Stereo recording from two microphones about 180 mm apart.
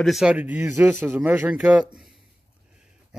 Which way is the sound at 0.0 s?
5° right (ahead or behind).